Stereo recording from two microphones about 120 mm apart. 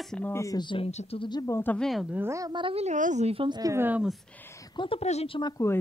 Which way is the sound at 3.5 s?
30° right (ahead or behind).